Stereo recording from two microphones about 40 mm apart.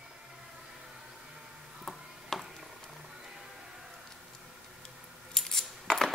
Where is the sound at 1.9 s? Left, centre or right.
Centre.